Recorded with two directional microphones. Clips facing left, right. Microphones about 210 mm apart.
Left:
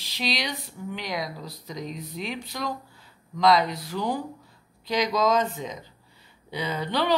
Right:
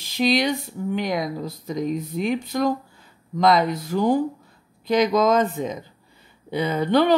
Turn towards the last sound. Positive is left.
turn(degrees=-50)  # may be behind; listen again after turning